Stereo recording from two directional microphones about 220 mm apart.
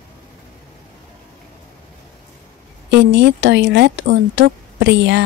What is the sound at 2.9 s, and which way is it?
Speech, 50° right (ahead or behind).